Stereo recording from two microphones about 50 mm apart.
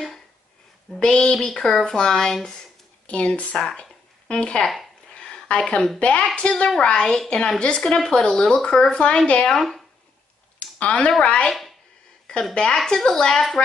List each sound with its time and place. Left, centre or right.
0.9 s a woman's voice: centre
3.1 s speech: left
3.5 s speech: centre
5.1 s a sound: left
5.9 s speech: left
6.8 s a woman's voice: centre
9.5 s speech: centre
10.6 s a sound: left
11.1 s a woman's voice: centre